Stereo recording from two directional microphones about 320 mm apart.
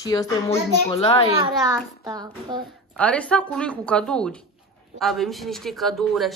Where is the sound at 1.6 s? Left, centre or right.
Centre.